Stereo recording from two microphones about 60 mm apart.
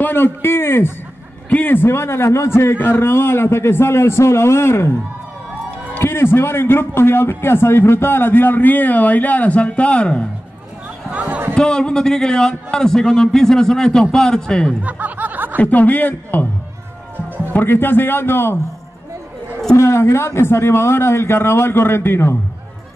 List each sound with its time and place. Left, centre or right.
0.0 s a man's voice: left
5.9 s a man's voice: left; by 10.2 s centre
11.1 s a sound: right
11.5 s a man's voice: centre
14.8 s snicker: right
15.6 s a man's voice: left
17.5 s a man's voice: left
19.8 s a man's voice: left